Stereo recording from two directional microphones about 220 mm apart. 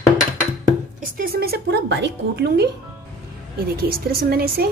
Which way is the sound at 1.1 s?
40° right (ahead or behind).